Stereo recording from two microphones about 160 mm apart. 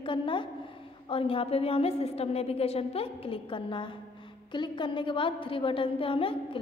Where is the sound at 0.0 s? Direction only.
30° left (ahead or behind).